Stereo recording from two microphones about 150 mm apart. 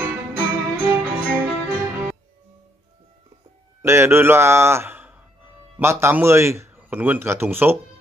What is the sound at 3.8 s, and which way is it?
Speech, 15° right (ahead or behind).